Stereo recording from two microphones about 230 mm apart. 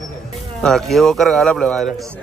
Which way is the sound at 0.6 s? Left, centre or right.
Centre.